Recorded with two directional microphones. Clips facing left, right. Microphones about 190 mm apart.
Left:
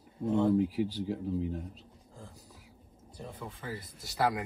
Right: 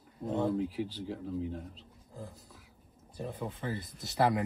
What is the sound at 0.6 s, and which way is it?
Speech, 10° left (ahead or behind).